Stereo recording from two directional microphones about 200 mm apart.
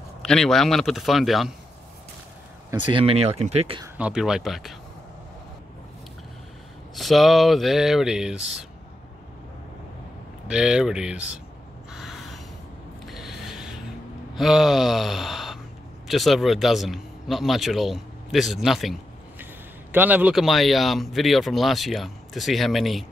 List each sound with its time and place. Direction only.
0.2 s speech: 5° left (ahead or behind)
2.8 s speech: 25° right (ahead or behind)
3.8 s speech: 5° right (ahead or behind)
7.0 s speech: centre (ahead or behind)
10.5 s speech: 5° right (ahead or behind)
11.9 s a sound: centre (ahead or behind)
14.3 s speech: centre (ahead or behind)